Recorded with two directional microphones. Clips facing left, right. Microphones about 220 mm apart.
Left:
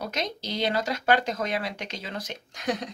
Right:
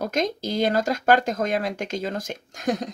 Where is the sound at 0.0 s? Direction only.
50° right (ahead or behind).